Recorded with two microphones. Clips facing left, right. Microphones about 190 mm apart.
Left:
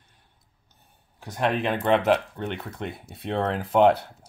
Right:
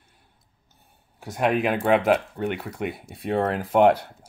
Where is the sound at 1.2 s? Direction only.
10° right (ahead or behind).